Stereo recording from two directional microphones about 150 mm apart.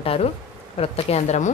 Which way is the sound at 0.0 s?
40° left (ahead or behind).